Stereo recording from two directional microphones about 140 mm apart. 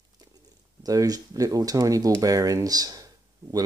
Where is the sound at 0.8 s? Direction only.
25° right (ahead or behind).